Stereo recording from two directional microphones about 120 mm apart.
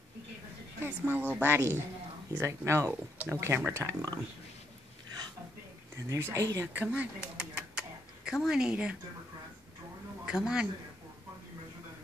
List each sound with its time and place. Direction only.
0.8 s a woman's voice: 15° right (ahead or behind)
6.0 s speech: 20° right (ahead or behind)
6.7 s speech: 15° right (ahead or behind)
10.2 s a man's voice: 5° right (ahead or behind)